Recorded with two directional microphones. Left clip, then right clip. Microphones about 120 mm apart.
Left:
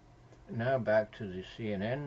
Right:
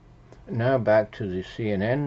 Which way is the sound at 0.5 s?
35° right (ahead or behind).